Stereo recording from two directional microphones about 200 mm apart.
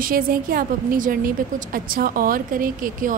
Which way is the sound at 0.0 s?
45° right (ahead or behind).